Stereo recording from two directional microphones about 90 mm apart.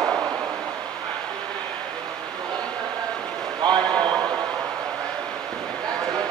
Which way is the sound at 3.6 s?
55° right (ahead or behind).